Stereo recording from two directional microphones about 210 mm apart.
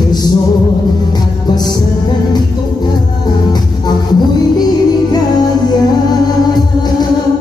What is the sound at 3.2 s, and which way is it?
Music, 20° left (ahead or behind).